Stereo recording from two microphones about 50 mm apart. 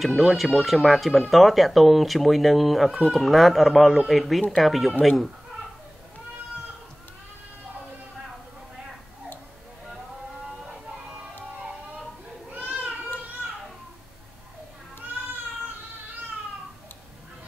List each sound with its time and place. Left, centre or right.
0.0 s speech: centre
12.4 s cat: right